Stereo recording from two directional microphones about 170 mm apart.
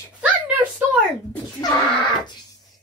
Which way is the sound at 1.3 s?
20° left (ahead or behind).